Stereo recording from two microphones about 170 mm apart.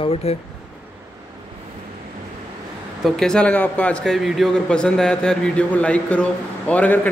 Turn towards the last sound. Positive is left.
turn(degrees=10)  # may be behind; listen again after turning